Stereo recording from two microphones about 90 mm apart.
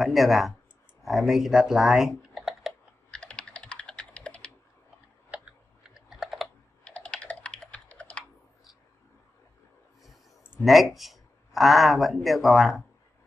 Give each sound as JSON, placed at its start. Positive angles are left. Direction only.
{"t": 0.0, "sound": "speech", "side_deg": -5}
{"t": 3.1, "sound": "computer keyboard", "side_deg": 10}
{"t": 5.3, "sound": "computer keyboard", "side_deg": -15}
{"t": 6.8, "sound": "computer keyboard", "side_deg": 10}
{"t": 10.6, "sound": "speech", "side_deg": 0}